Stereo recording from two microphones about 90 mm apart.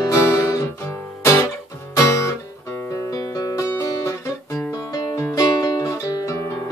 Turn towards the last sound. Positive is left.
turn(degrees=35)  # may be behind; listen again after turning